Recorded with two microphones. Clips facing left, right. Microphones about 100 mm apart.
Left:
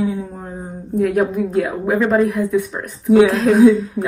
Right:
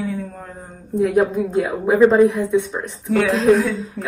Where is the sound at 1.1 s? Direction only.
15° right (ahead or behind).